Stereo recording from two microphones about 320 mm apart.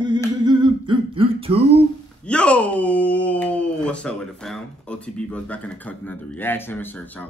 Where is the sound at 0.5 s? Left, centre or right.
Centre.